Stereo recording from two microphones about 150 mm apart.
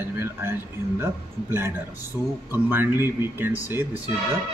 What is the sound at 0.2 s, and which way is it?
A man's voice, 15° right (ahead or behind).